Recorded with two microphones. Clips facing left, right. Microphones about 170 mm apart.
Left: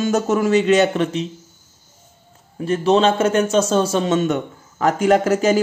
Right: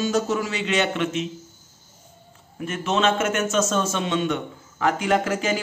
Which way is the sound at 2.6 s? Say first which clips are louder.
Left 8 dB; 35° left (ahead or behind).